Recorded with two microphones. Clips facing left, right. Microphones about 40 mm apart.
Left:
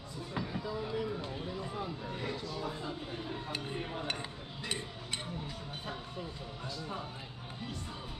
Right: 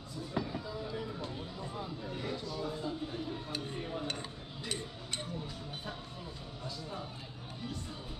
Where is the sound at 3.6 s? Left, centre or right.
Left.